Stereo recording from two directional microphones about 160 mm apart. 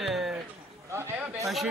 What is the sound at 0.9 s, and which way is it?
Speech, 20° right (ahead or behind).